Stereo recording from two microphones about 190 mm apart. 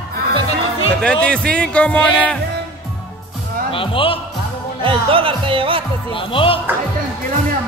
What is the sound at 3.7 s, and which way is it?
Speech, 30° left (ahead or behind).